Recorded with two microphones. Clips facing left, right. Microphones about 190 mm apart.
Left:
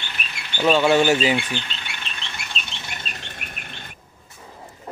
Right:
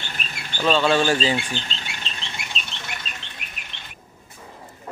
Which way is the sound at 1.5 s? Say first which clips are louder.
Left 1 dB; 35° right (ahead or behind).